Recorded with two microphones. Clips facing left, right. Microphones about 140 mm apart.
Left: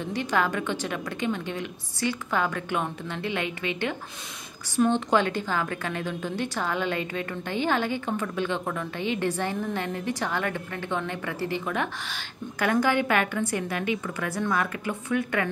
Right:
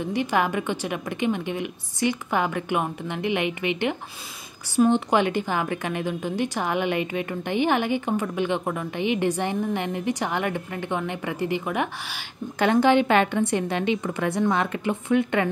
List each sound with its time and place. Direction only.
0.0 s a woman's voice: 15° right (ahead or behind)
12.5 s a woman's voice: 25° right (ahead or behind)